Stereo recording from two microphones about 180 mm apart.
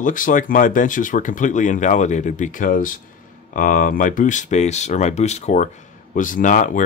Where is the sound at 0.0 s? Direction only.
50° left (ahead or behind).